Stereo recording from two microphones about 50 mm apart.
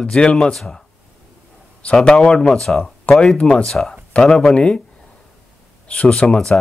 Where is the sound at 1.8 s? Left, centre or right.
Left.